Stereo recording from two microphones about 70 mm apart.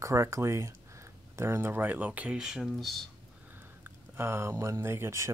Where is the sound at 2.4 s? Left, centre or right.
Centre.